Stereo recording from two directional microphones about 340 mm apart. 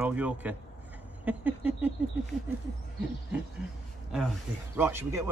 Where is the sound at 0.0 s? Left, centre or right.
Centre.